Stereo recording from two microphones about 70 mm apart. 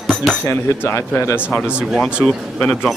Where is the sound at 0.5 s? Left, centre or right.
Left.